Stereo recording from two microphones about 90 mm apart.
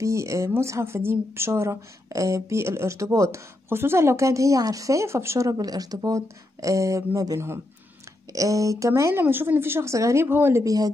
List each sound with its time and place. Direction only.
0.0 s a woman's voice: 35° right (ahead or behind)
9.2 s a woman's voice: 20° right (ahead or behind)
10.2 s a woman's voice: 25° right (ahead or behind)
10.6 s speech: 45° right (ahead or behind)